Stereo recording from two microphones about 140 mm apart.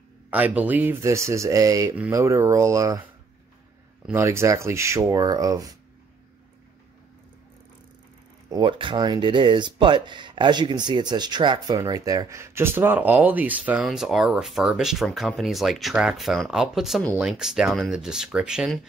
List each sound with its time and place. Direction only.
0.3 s speech: 10° right (ahead or behind)
4.1 s speech: 20° right (ahead or behind)
8.5 s speech: 35° right (ahead or behind); by 18.8 s 5° right (ahead or behind)